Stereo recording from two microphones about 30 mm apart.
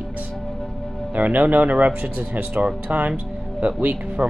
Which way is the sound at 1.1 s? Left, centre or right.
Right.